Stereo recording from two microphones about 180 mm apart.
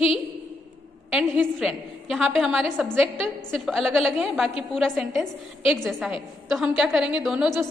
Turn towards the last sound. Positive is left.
turn(degrees=-5)  # may be behind; listen again after turning